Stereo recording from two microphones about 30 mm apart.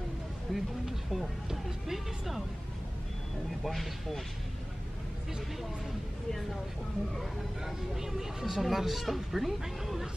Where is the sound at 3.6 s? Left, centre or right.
Centre.